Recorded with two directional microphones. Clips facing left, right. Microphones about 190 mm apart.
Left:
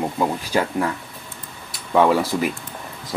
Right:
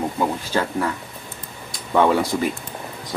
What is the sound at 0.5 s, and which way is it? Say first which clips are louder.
Speech: left 2 dB; 15° left (ahead or behind).